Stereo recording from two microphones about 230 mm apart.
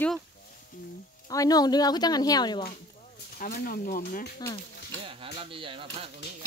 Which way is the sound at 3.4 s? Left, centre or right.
Left.